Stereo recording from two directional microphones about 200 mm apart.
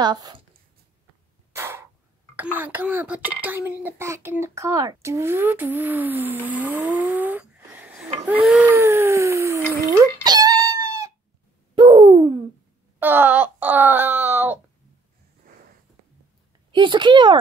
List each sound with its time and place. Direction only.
0.0 s speech: 20° right (ahead or behind)
1.5 s cough: 10° right (ahead or behind)
2.3 s a child's voice: 10° right (ahead or behind)
8.3 s a sound: 5° right (ahead or behind)
10.2 s dog: 20° right (ahead or behind)
11.7 s a sound: 25° right (ahead or behind)
13.0 s wail: 10° right (ahead or behind)
16.7 s speech: 25° right (ahead or behind)